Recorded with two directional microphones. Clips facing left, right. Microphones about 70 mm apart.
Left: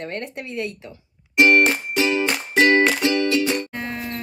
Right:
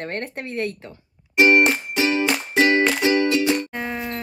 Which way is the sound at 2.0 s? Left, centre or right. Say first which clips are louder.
Left 1 dB; centre.